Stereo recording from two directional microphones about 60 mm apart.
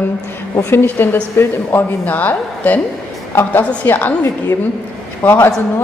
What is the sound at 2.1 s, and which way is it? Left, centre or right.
A woman's voice, left.